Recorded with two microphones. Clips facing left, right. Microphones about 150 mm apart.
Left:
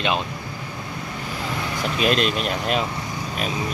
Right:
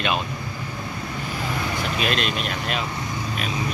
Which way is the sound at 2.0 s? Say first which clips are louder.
Left 7 dB; 40° left (ahead or behind).